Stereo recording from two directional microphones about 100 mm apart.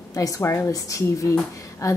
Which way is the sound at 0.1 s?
35° left (ahead or behind).